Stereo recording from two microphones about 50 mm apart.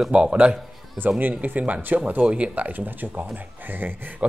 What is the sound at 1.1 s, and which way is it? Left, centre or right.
Speech, right.